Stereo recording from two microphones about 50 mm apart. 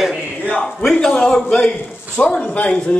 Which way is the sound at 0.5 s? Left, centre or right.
Centre.